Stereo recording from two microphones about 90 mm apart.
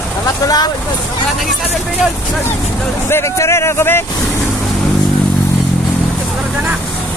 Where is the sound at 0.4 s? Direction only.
40° left (ahead or behind).